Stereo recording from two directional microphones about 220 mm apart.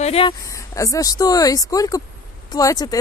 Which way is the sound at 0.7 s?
15° left (ahead or behind).